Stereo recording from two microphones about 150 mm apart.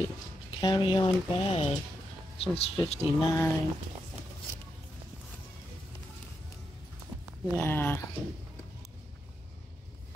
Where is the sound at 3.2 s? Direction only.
20° left (ahead or behind).